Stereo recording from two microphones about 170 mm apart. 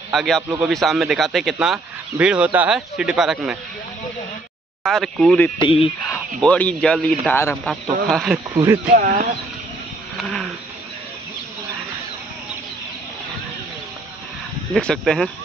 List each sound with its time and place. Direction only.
0.1 s a man's voice: centre (ahead or behind)
4.8 s a man's voice: centre (ahead or behind)
5.6 s speech: 30° left (ahead or behind)
6.0 s a man's voice: 10° left (ahead or behind)
8.5 s speech: 20° right (ahead or behind)
8.8 s speech: 55° right (ahead or behind)
14.7 s a man's voice: 5° left (ahead or behind)